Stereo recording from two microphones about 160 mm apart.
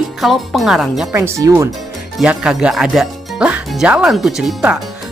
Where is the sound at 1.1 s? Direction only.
20° right (ahead or behind).